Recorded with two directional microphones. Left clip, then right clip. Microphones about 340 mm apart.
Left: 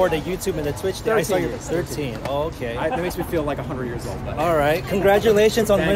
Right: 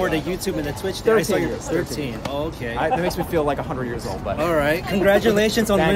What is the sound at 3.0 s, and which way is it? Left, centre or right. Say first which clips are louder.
Speech: right 3 dB; centre.